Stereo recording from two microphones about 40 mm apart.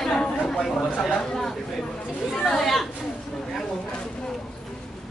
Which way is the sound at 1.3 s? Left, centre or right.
Centre.